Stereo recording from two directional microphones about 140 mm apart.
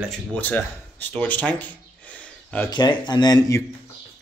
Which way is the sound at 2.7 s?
30° left (ahead or behind).